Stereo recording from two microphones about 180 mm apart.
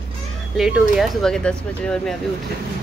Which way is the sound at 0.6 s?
Centre (ahead or behind).